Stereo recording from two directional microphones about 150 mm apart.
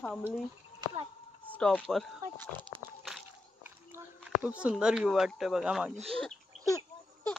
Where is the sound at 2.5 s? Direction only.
30° right (ahead or behind).